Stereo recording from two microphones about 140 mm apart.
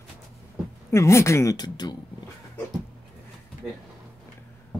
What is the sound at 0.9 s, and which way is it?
Speech, 20° left (ahead or behind).